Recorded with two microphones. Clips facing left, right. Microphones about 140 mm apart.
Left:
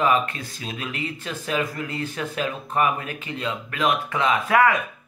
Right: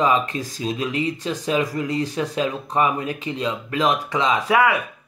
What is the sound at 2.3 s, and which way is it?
A man's voice, 20° right (ahead or behind).